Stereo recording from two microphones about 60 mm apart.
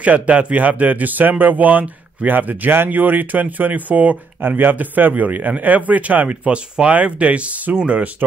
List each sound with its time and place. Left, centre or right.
0.0 s speech: right